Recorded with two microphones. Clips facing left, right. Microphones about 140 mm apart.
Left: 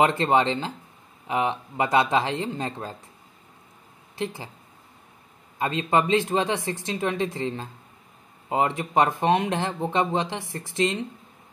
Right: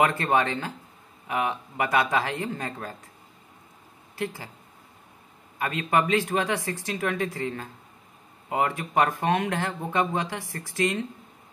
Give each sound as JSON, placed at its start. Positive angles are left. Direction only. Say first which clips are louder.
{"t": 0.0, "sound": "speech", "louder": "left 3 dB", "side_deg": 25}
{"t": 4.2, "sound": "speech", "louder": "left 1 dB", "side_deg": 20}
{"t": 5.6, "sound": "speech", "louder": "left 2 dB", "side_deg": 25}